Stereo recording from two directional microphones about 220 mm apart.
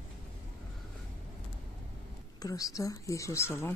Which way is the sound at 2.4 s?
15° left (ahead or behind).